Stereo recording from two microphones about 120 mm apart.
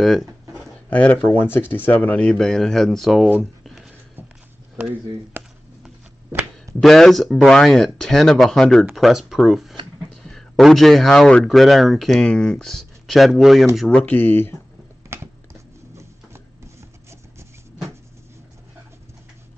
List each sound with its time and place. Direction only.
0.0 s speech: centre (ahead or behind)
0.8 s speech: 15° left (ahead or behind)
5.4 s a sound: 15° right (ahead or behind)
6.8 s speech: centre (ahead or behind); by 14.5 s 15° left (ahead or behind)